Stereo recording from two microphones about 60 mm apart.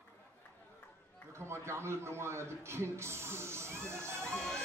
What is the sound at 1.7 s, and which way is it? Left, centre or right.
Speech, right.